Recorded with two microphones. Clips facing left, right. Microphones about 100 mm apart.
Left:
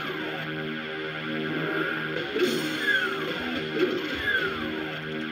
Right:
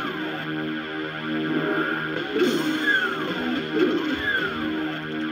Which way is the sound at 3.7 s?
45° right (ahead or behind).